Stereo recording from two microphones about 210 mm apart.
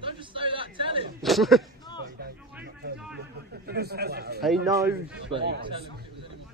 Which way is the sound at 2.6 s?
50° right (ahead or behind).